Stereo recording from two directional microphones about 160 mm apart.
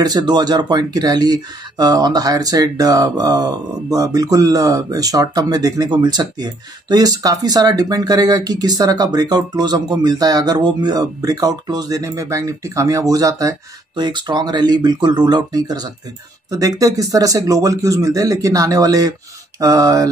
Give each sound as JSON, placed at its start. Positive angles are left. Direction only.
{"t": 0.0, "sound": "speech", "side_deg": -25}